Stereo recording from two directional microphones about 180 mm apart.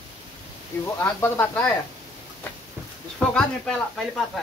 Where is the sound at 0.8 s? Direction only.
15° left (ahead or behind).